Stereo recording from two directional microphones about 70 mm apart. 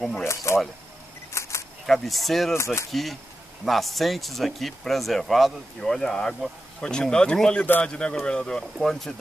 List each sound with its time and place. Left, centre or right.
0.2 s speech: left
1.3 s a sound: left
1.9 s speech: centre
2.5 s speech: left
2.9 s speech: centre